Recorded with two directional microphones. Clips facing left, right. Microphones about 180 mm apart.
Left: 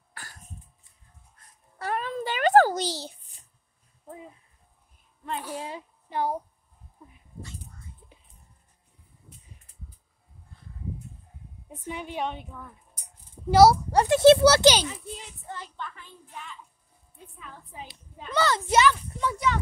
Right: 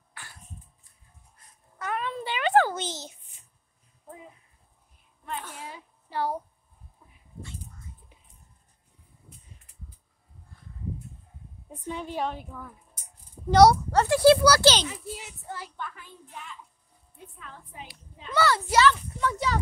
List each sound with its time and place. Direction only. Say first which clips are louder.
0.1 s throat clearing: left 2 dB; 40° left (ahead or behind)
1.8 s a sound: left 2 dB; 35° left (ahead or behind)
5.7 s a sound: left 4 dB; 20° left (ahead or behind)
11.8 s a woman's voice: right 1 dB; 5° left (ahead or behind)
14.0 s a child's voice: left 2 dB; 25° left (ahead or behind)
14.9 s a child's voice: right 1 dB; 5° right (ahead or behind)
18.3 s a child's voice: even; 20° left (ahead or behind)
19.3 s speech: left 3 dB; 35° right (ahead or behind)